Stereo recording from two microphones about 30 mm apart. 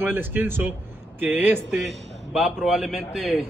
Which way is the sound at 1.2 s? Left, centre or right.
Right.